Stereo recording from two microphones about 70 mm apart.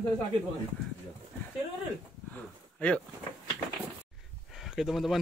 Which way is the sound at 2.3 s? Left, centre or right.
Left.